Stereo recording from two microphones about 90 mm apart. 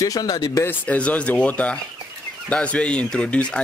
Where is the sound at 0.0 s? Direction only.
45° left (ahead or behind).